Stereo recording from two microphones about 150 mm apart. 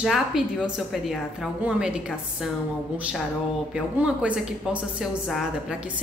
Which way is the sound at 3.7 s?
5° right (ahead or behind).